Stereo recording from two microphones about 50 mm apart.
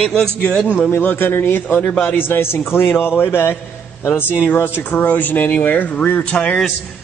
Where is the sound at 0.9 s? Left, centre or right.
Left.